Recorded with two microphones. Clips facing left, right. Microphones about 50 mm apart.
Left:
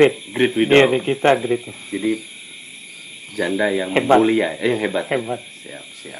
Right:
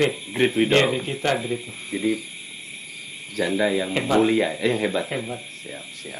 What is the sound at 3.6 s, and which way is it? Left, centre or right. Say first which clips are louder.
Speech: left 3 dB; centre.